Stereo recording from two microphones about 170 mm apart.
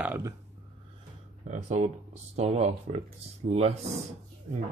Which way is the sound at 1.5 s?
45° right (ahead or behind).